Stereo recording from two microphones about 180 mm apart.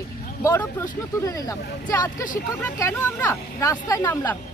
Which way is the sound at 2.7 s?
15° left (ahead or behind).